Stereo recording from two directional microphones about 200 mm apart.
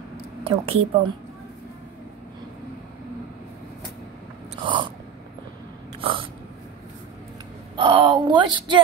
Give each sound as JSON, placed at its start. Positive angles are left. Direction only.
{"t": 0.4, "sound": "a woman's voice", "side_deg": -30}
{"t": 4.6, "sound": "a sound", "side_deg": -25}
{"t": 5.9, "sound": "snort", "side_deg": -25}
{"t": 7.7, "sound": "speech", "side_deg": -25}